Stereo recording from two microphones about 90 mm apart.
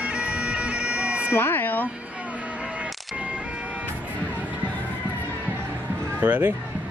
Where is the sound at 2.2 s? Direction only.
15° right (ahead or behind).